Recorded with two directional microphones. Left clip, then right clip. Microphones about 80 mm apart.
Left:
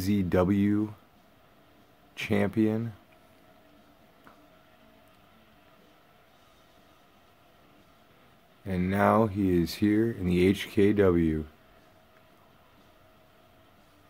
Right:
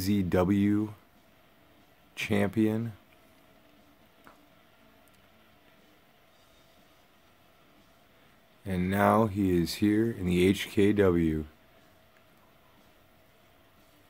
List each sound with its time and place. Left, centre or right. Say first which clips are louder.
0.0 s speech: left 1 dB; centre
2.1 s speech: left 1 dB; centre
8.6 s speech: left 1 dB; centre